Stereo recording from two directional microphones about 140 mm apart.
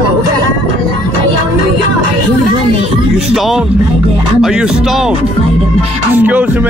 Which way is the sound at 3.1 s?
Centre (ahead or behind).